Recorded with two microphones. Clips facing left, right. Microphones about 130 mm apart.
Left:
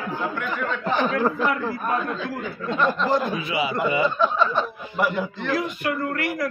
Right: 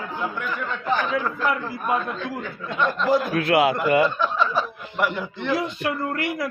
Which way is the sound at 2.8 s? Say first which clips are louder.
Right 1 dB; centre (ahead or behind).